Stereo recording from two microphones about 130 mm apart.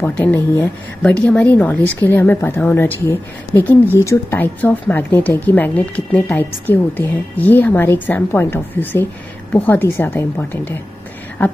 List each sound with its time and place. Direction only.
0.0 s speech: 15° left (ahead or behind)